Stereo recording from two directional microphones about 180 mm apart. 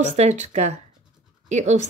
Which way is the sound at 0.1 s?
40° right (ahead or behind).